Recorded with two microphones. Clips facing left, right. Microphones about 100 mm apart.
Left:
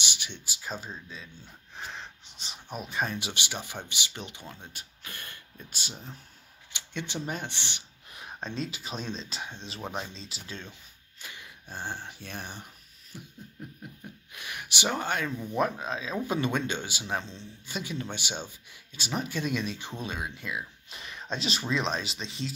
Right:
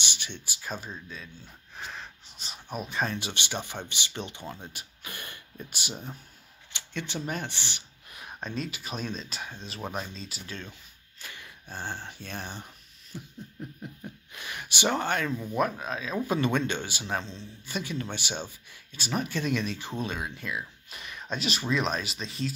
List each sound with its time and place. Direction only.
0.0 s speech: 10° left (ahead or behind)
1.8 s a sound: 20° left (ahead or behind)
2.9 s speech: 10° left (ahead or behind)
4.5 s speech: 10° right (ahead or behind)
6.7 s speech: 20° left (ahead or behind)
14.3 s speech: 5° left (ahead or behind)
15.5 s speech: 25° left (ahead or behind)
21.0 s speech: 30° left (ahead or behind)